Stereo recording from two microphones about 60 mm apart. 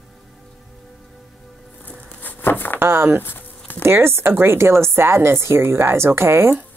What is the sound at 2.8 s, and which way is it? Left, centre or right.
Speech, right.